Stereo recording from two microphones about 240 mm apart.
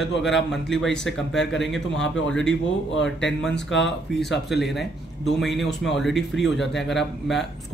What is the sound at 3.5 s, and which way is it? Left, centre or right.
Speech, left.